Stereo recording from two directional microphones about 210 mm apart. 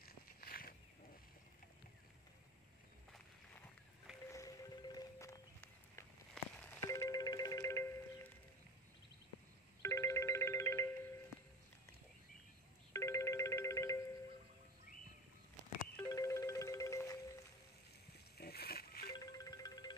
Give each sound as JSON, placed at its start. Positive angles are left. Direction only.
{"t": 0.0, "sound": "a sound", "side_deg": 45}
{"t": 4.3, "sound": "music", "side_deg": 15}
{"t": 9.8, "sound": "ringtone", "side_deg": 15}
{"t": 12.9, "sound": "music", "side_deg": 15}
{"t": 16.0, "sound": "music", "side_deg": 15}
{"t": 18.4, "sound": "a sound", "side_deg": 50}
{"t": 19.1, "sound": "music", "side_deg": 15}